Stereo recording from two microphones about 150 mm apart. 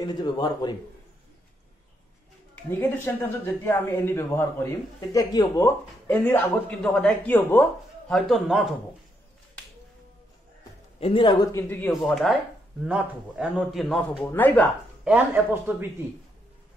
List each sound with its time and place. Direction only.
0.0 s a man's voice: 25° left (ahead or behind)
2.8 s speech: 15° left (ahead or behind)
6.0 s speech: 10° left (ahead or behind)
8.1 s a man's voice: centre (ahead or behind)
11.0 s a man's voice: 35° left (ahead or behind); by 11.9 s 15° left (ahead or behind)
11.9 s a man's voice: centre (ahead or behind)
14.2 s speech: 10° left (ahead or behind)
15.0 s a man's voice: 10° right (ahead or behind)